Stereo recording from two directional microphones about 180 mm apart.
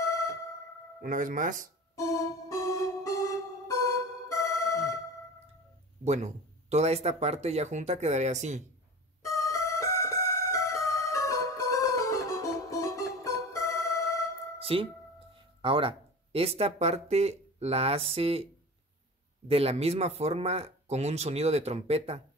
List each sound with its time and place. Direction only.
0.0 s music: 15° left (ahead or behind)
1.0 s speech: 45° right (ahead or behind)
2.0 s keyboard: 15° left (ahead or behind)
6.0 s speech: 40° right (ahead or behind)
9.2 s music: 15° left (ahead or behind)
14.6 s music: 30° right (ahead or behind)
15.6 s speech: 30° right (ahead or behind)
19.4 s speech: 35° right (ahead or behind)